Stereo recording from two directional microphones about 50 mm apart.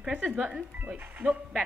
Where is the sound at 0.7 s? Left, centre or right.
Right.